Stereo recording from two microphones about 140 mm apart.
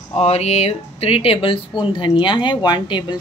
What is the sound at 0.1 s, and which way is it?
Speech, 50° left (ahead or behind).